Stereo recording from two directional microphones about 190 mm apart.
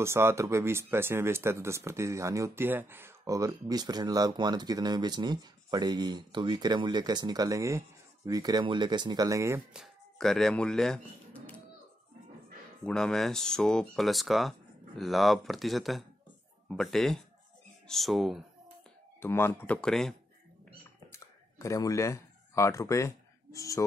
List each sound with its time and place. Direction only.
0.0 s speech: 15° right (ahead or behind)
9.8 s speech: centre (ahead or behind)
12.8 s speech: 5° left (ahead or behind)
19.1 s speech: 10° left (ahead or behind)
21.1 s a sound: 15° left (ahead or behind)